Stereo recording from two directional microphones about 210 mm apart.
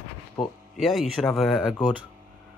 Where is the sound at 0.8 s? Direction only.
Centre (ahead or behind).